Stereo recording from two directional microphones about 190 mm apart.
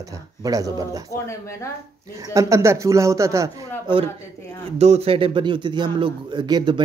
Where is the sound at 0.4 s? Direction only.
20° right (ahead or behind).